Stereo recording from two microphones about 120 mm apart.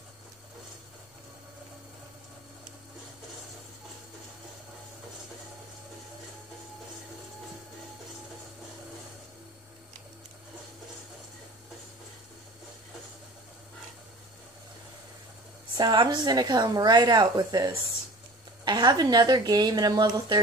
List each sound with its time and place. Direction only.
15.8 s speech: 40° right (ahead or behind)